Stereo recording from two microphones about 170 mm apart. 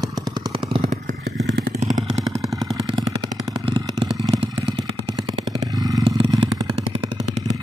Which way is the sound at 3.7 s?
25° right (ahead or behind).